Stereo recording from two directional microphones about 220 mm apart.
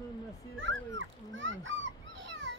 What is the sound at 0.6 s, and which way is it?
Speech, 60° right (ahead or behind).